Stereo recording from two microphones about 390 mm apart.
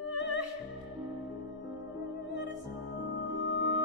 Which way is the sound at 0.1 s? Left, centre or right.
Right.